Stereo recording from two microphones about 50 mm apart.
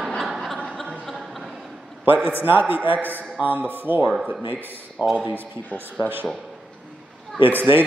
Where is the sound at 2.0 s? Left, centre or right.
Right.